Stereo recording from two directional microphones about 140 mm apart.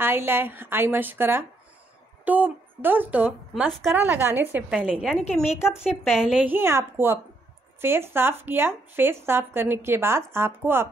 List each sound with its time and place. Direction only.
0.0 s a woman's voice: 15° right (ahead or behind)
6.5 s speech: 20° right (ahead or behind)